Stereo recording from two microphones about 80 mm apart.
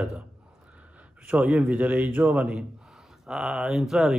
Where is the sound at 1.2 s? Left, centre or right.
Centre.